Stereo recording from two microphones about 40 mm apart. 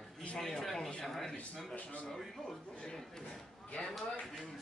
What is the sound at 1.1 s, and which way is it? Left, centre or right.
Speech, centre.